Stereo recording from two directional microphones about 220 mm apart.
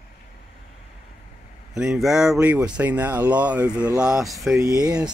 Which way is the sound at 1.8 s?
Centre (ahead or behind).